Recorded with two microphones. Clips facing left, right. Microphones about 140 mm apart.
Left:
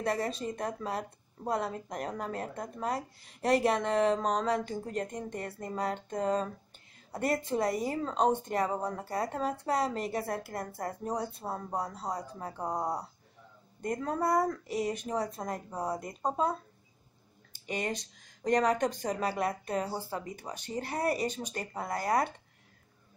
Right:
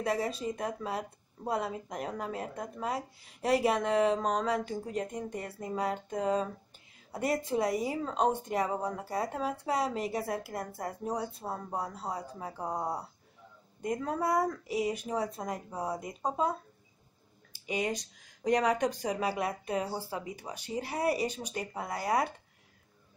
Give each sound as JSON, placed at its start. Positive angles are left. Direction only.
{"t": 0.0, "sound": "speech", "side_deg": -5}
{"t": 17.6, "sound": "speech", "side_deg": -10}